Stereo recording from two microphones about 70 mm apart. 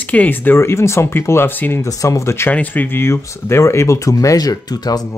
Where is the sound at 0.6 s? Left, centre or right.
Left.